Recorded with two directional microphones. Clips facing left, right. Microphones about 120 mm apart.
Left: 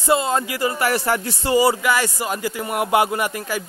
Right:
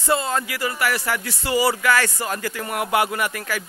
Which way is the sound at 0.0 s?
15° left (ahead or behind).